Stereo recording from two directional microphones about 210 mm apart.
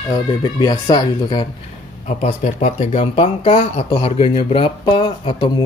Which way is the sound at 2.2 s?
30° left (ahead or behind).